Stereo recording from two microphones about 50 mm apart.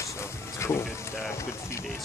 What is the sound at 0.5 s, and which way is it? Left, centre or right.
Speech, left.